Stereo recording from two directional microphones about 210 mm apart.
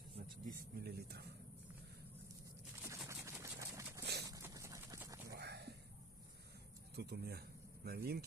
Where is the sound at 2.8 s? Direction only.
15° right (ahead or behind).